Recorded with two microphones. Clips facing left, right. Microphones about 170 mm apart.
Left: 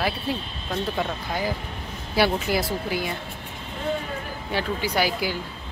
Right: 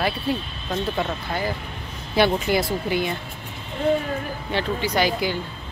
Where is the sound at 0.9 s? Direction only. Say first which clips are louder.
Right 1 dB; 10° left (ahead or behind).